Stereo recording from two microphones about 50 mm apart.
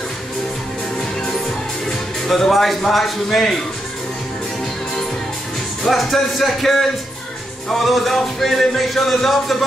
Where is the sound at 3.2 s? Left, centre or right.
Centre.